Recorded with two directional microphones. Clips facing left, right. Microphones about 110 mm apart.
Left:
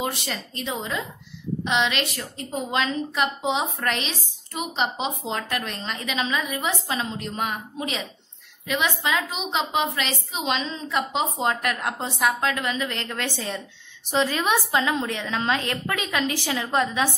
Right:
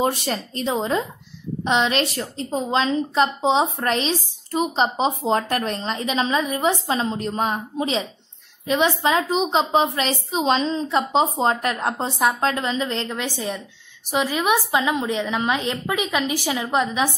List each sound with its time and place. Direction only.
0.0 s a woman's voice: 40° right (ahead or behind)
13.2 s a woman's voice: 15° right (ahead or behind)